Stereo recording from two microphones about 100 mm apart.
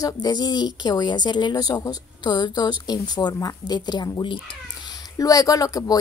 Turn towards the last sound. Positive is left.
turn(degrees=35)  # may be behind; listen again after turning